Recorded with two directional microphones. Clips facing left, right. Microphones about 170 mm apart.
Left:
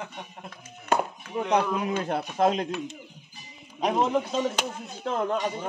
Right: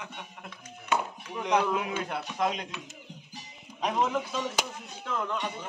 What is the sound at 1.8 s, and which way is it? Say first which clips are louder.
Speech: left 5 dB; 40° left (ahead or behind).